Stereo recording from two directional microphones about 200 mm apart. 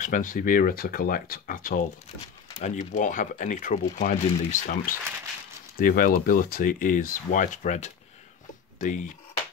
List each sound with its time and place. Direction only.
0.0 s speech: 40° left (ahead or behind)